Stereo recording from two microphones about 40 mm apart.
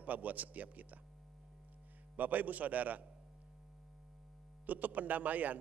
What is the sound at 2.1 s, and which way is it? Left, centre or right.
Speech, right.